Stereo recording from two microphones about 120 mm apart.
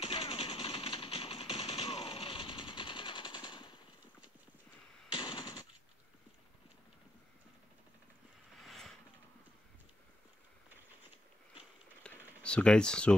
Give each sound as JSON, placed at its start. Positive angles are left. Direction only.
{"t": 0.0, "sound": "machine gun", "side_deg": 50}
{"t": 5.1, "sound": "machine gun", "side_deg": 35}
{"t": 8.6, "sound": "a sound", "side_deg": 0}
{"t": 12.0, "sound": "typing", "side_deg": 10}